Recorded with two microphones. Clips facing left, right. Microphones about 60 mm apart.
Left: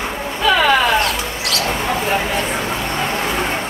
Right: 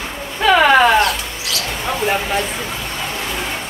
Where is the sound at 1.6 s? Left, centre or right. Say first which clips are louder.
Left 6 dB; left.